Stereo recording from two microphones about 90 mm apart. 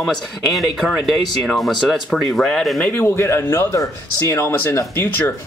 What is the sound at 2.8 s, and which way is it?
Speech, 25° left (ahead or behind).